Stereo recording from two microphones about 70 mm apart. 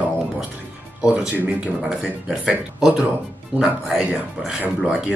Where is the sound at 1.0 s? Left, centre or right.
Right.